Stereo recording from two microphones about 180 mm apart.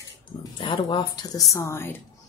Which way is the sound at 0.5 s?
30° left (ahead or behind).